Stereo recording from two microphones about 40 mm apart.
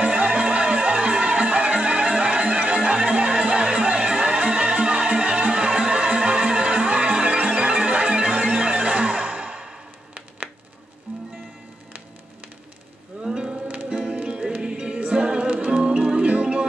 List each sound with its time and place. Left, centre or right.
0.0 s music: right
13.2 s music: centre